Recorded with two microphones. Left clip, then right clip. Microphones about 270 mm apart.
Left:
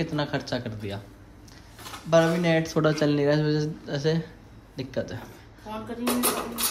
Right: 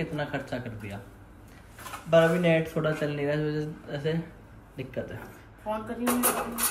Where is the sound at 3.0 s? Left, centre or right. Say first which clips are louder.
Left 6 dB; left.